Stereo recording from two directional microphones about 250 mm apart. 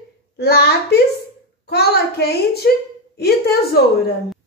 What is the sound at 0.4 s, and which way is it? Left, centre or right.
A woman's voice, left.